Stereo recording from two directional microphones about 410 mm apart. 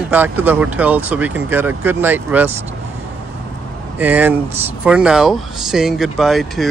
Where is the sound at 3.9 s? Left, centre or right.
Centre.